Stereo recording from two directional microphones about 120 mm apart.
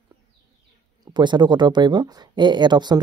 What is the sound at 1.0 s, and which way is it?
Speech, 40° right (ahead or behind).